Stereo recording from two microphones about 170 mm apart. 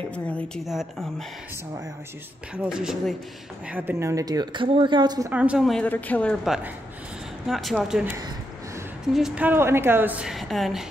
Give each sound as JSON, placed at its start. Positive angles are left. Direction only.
{"t": 0.1, "sound": "speech", "side_deg": 5}
{"t": 2.5, "sound": "a woman's voice", "side_deg": -5}
{"t": 5.3, "sound": "speech", "side_deg": -5}
{"t": 6.4, "sound": "speech", "side_deg": -5}
{"t": 9.1, "sound": "a woman's voice", "side_deg": -5}